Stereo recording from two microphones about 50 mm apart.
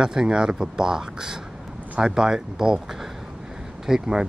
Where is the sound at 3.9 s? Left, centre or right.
Centre.